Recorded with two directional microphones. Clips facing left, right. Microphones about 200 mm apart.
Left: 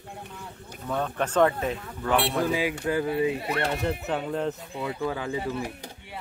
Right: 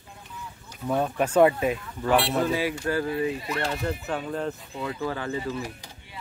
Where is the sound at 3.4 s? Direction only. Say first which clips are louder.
Left 2 dB; 60° left (ahead or behind).